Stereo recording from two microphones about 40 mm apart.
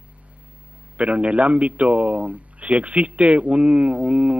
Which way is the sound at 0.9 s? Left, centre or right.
Right.